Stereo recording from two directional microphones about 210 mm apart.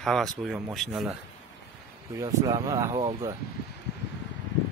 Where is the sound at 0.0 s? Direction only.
Centre (ahead or behind).